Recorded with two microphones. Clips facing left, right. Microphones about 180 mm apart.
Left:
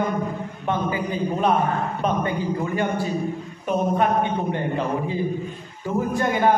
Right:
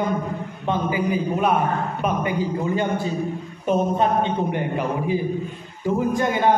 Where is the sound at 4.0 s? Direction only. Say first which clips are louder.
Right 1 dB; 20° right (ahead or behind).